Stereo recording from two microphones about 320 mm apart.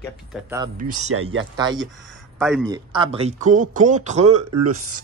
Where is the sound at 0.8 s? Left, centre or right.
Right.